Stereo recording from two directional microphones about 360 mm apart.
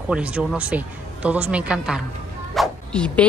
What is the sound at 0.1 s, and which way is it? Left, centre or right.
Speech, centre.